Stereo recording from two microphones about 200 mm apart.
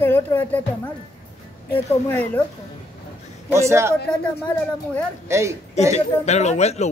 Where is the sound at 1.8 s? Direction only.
10° left (ahead or behind).